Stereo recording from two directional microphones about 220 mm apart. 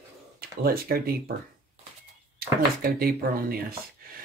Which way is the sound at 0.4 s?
45° right (ahead or behind).